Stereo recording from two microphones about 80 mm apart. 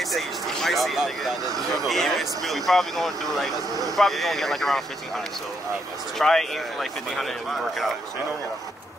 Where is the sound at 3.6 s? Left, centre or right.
Right.